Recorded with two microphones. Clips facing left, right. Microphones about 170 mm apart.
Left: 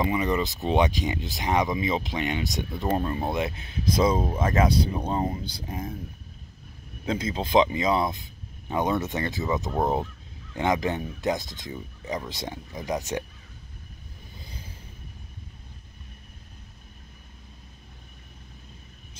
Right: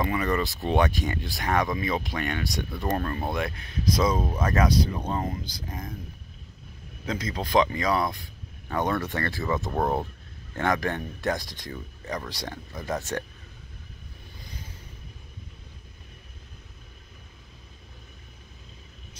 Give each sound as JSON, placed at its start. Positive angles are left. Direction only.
{"t": 0.0, "sound": "speech", "side_deg": 15}
{"t": 7.1, "sound": "speech", "side_deg": 30}